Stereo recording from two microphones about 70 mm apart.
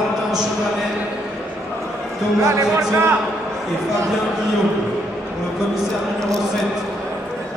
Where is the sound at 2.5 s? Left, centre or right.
Right.